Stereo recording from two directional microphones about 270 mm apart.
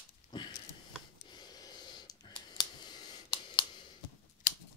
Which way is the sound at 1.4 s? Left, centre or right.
Centre.